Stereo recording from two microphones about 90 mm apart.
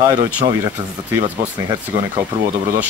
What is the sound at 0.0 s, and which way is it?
Speech, 50° right (ahead or behind).